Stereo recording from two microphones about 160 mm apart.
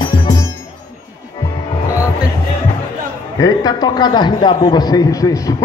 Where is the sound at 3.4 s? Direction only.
25° left (ahead or behind).